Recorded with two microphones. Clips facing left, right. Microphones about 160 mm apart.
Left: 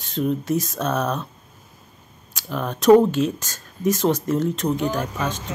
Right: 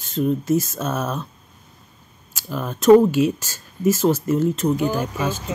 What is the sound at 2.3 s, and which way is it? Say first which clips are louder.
Speech: left 1 dB; 5° right (ahead or behind).